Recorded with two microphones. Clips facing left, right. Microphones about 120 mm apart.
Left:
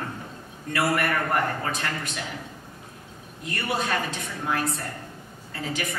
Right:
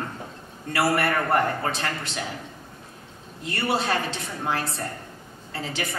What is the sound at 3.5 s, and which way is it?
A woman's voice, 30° right (ahead or behind).